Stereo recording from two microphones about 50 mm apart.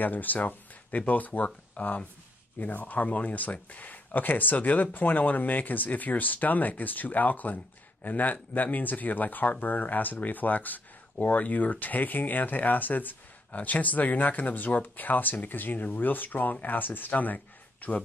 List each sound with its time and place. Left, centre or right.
0.0 s speech: left